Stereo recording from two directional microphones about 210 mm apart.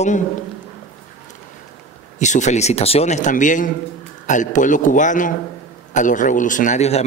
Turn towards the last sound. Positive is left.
turn(degrees=35)  # may be behind; listen again after turning